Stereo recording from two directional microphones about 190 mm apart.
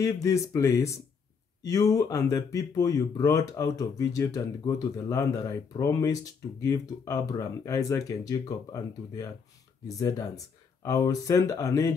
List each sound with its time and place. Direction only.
0.0 s speech: 15° left (ahead or behind)